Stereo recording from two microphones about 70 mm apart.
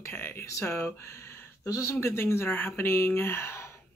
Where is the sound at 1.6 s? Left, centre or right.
Left.